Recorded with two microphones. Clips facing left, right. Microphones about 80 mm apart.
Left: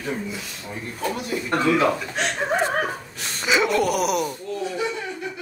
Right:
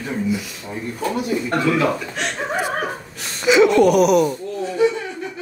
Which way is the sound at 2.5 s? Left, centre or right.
Centre.